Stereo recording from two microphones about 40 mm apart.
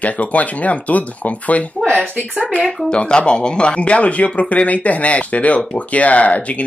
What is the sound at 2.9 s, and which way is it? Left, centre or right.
Speech, left.